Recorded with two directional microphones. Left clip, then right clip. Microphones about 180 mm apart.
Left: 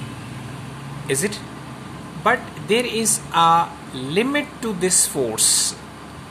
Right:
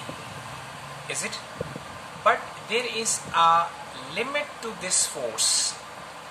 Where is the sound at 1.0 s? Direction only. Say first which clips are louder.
Left 9 dB; 55° left (ahead or behind).